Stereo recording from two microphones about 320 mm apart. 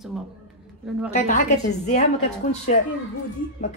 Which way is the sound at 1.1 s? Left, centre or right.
Left.